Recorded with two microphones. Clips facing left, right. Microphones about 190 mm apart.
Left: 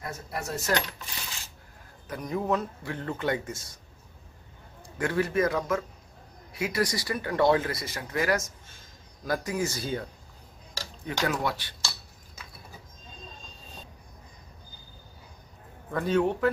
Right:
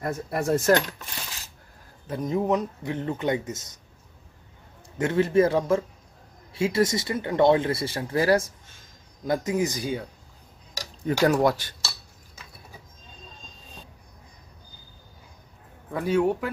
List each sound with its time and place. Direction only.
0.0 s speech: 50° right (ahead or behind)
2.0 s speech: 25° right (ahead or behind)
4.8 s speech: 20° right (ahead or behind)
11.2 s speech: 45° right (ahead or behind)
15.9 s a man's voice: 10° right (ahead or behind)